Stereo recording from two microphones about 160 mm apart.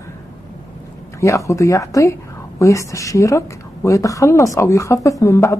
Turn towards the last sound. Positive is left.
turn(degrees=20)  # may be behind; listen again after turning